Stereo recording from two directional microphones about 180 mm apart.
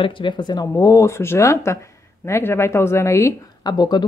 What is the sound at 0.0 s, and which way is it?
Speech, 25° left (ahead or behind).